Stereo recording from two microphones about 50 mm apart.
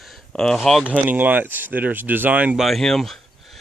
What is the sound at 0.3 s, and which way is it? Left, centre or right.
Speech, centre.